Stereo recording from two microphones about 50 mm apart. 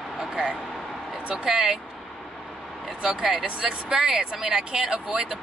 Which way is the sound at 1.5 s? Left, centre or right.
Centre.